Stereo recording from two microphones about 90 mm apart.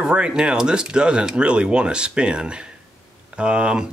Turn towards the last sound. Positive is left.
turn(degrees=-10)  # may be behind; listen again after turning